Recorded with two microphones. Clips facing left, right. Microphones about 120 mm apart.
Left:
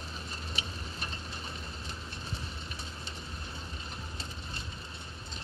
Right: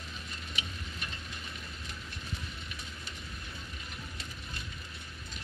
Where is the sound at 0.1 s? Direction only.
35° left (ahead or behind).